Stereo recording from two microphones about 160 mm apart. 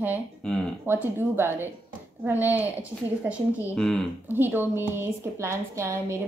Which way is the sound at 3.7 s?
5° left (ahead or behind).